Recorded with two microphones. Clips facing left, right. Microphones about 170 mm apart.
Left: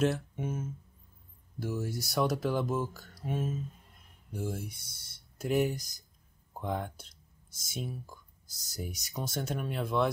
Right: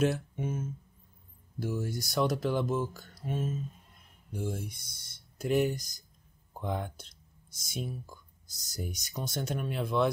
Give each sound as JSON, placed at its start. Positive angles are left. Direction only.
{"t": 0.0, "sound": "speech", "side_deg": 0}